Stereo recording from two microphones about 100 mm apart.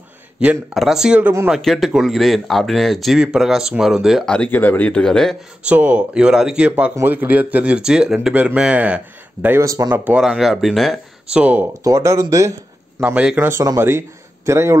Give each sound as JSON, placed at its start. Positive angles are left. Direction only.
{"t": 0.7, "sound": "speech", "side_deg": -5}
{"t": 1.2, "sound": "speech", "side_deg": -20}
{"t": 1.5, "sound": "speech", "side_deg": 0}
{"t": 4.3, "sound": "speech", "side_deg": 15}
{"t": 5.6, "sound": "speech", "side_deg": -15}
{"t": 7.0, "sound": "speech", "side_deg": -20}
{"t": 9.6, "sound": "speech", "side_deg": -35}
{"t": 9.8, "sound": "speech", "side_deg": -15}
{"t": 10.2, "sound": "speech", "side_deg": -5}
{"t": 11.8, "sound": "speech", "side_deg": -30}
{"t": 13.0, "sound": "speech", "side_deg": -10}
{"t": 13.7, "sound": "a man's voice", "side_deg": -25}